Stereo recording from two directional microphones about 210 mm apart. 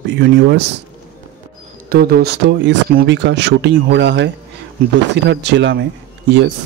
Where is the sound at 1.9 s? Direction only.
45° right (ahead or behind).